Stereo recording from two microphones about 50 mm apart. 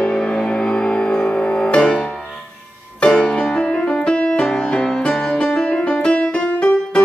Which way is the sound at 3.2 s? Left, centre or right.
Left.